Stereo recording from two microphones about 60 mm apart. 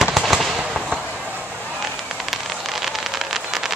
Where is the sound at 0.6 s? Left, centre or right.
Centre.